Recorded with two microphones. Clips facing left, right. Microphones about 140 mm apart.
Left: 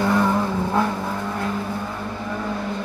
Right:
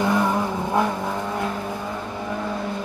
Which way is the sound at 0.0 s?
15° right (ahead or behind).